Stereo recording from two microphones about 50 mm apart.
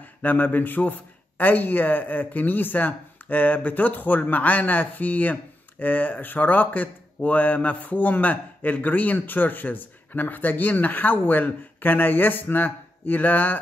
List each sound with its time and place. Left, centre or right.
0.0 s a man's voice: left